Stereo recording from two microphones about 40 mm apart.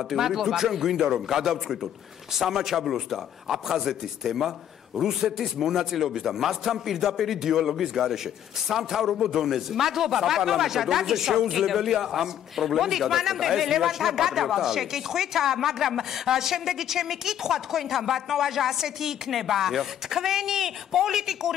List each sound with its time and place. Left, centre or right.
0.1 s a man's voice: centre